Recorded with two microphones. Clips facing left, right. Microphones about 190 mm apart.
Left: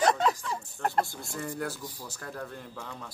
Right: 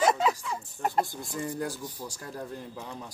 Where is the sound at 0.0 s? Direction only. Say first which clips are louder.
Even; 5° right (ahead or behind).